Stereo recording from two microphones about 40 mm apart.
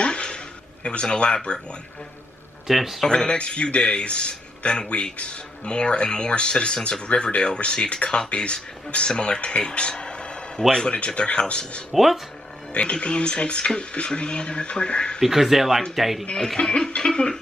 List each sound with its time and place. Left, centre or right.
0.0 s a sound: left
0.8 s a man's voice: left
2.7 s speech: centre
3.1 s a man's voice: left
11.9 s speech: centre
12.7 s a man's voice: left
15.2 s speech: centre
16.3 s a man's voice: centre